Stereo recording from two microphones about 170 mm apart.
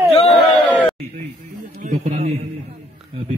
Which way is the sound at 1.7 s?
55° right (ahead or behind).